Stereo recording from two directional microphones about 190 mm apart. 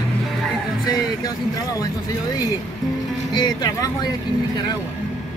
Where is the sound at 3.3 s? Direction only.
20° left (ahead or behind).